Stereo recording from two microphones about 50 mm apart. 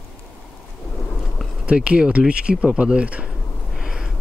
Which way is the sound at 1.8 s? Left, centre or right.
Right.